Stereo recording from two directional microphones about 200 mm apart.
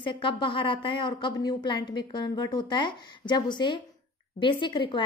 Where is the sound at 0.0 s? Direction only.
25° left (ahead or behind).